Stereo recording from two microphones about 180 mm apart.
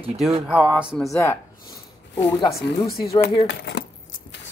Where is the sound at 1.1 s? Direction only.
15° left (ahead or behind).